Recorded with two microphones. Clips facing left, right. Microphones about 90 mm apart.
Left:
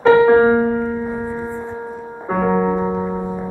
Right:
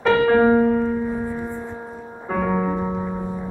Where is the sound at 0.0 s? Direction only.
25° left (ahead or behind).